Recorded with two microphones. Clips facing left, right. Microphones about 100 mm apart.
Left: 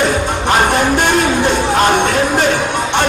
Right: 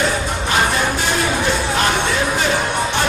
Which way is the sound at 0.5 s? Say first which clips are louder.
Left 6 dB; 55° left (ahead or behind).